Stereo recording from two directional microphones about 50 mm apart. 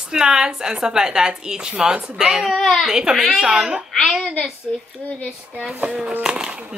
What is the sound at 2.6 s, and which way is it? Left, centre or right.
Speech, centre.